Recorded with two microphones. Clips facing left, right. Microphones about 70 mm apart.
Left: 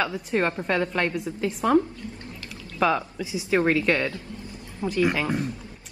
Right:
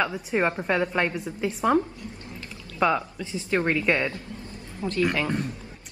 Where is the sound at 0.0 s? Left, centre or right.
Centre.